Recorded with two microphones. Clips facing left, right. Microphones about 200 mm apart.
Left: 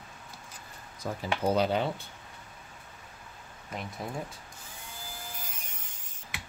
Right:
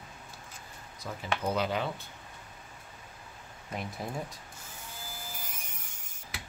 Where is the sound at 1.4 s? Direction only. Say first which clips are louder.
Left 5 dB; 30° left (ahead or behind).